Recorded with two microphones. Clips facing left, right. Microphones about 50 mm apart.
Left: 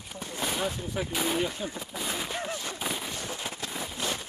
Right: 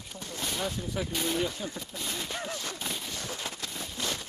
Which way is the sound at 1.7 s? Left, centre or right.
Centre.